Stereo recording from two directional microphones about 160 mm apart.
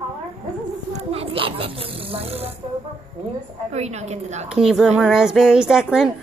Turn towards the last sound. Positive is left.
turn(degrees=-5)  # may be behind; listen again after turning